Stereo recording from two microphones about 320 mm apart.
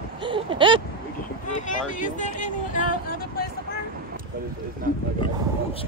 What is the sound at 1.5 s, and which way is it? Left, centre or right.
Speech, left.